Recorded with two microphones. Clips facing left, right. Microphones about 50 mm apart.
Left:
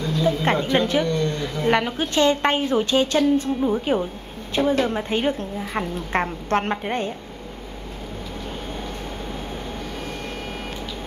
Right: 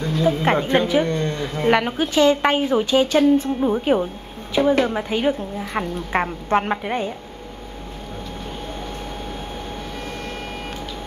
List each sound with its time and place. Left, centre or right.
0.0 s a sound: right
0.7 s speech: centre
1.0 s speech: right
1.7 s a woman's voice: centre
5.1 s a woman's voice: centre